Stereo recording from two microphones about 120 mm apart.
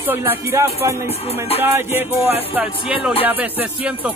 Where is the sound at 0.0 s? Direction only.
15° right (ahead or behind).